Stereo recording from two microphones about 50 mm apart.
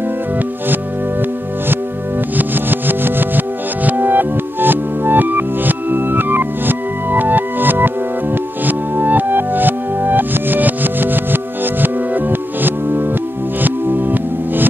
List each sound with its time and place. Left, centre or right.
2.3 s music: right